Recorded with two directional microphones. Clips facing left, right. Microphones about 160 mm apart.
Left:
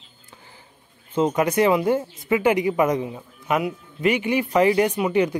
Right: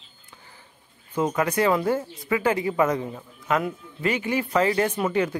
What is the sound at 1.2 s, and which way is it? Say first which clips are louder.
Speech: left 4 dB; 20° left (ahead or behind).